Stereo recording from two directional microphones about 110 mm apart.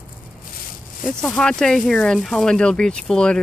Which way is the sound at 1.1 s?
5° left (ahead or behind).